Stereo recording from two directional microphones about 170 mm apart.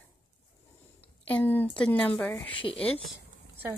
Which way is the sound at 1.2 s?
10° left (ahead or behind).